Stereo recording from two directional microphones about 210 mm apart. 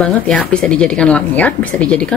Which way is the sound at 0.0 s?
5° left (ahead or behind).